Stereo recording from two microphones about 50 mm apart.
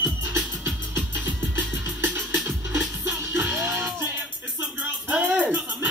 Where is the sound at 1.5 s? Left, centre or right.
Right.